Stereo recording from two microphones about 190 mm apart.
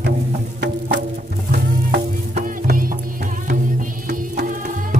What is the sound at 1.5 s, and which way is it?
Music, 50° right (ahead or behind).